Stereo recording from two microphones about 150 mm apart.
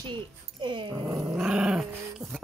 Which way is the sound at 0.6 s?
30° right (ahead or behind).